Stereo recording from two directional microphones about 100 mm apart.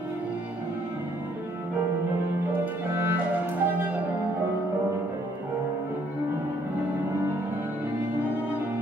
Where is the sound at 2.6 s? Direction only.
20° right (ahead or behind).